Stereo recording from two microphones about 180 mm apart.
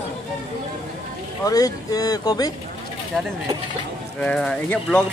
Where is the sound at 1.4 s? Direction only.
20° left (ahead or behind).